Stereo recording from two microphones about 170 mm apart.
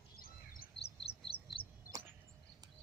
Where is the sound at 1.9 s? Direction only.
20° right (ahead or behind).